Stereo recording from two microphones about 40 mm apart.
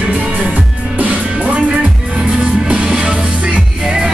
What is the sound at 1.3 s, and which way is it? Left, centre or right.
Music, right.